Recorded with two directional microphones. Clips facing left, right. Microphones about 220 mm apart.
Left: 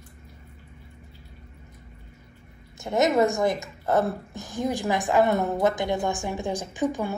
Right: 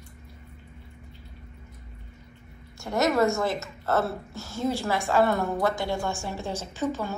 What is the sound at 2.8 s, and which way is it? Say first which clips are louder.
A woman's voice: left 2 dB; 20° left (ahead or behind).